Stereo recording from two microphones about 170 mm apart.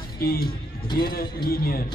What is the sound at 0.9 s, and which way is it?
Speech, 65° left (ahead or behind).